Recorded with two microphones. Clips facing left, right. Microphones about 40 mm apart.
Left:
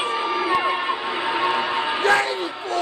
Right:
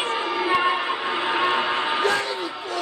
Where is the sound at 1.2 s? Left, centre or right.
Centre.